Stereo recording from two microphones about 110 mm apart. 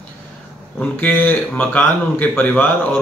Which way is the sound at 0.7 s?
10° left (ahead or behind).